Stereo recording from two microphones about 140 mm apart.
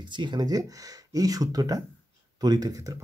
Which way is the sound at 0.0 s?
35° right (ahead or behind).